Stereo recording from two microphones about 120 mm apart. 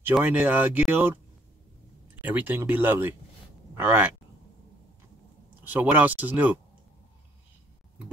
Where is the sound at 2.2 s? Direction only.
15° right (ahead or behind).